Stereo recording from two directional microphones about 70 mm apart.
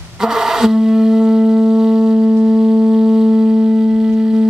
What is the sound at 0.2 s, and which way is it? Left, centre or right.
Music, centre.